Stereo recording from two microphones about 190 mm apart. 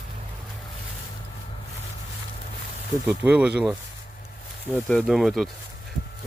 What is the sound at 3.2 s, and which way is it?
Speech, 5° right (ahead or behind).